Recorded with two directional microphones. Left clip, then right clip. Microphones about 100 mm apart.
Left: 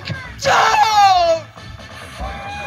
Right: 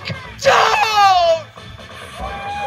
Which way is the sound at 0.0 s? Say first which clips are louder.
Right 4 dB; 5° right (ahead or behind).